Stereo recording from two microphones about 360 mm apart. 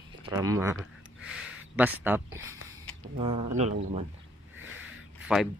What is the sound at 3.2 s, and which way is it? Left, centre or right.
Speech, centre.